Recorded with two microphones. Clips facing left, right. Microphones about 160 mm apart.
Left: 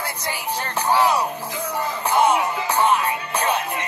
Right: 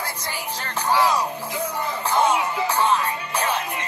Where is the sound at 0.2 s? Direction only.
15° left (ahead or behind).